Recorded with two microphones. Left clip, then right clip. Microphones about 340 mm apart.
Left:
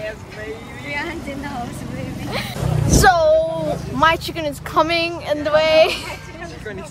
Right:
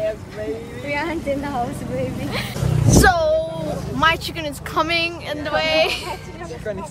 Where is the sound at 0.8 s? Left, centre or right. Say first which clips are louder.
Right 2 dB; right.